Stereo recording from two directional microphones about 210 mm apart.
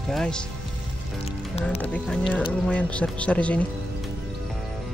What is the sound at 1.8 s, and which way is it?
Speech, 5° left (ahead or behind).